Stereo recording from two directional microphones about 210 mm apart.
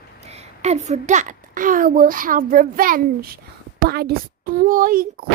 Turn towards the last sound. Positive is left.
turn(degrees=-45)  # may be behind; listen again after turning